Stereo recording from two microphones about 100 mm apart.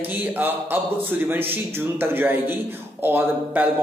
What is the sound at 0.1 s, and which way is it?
A man's voice, 20° right (ahead or behind).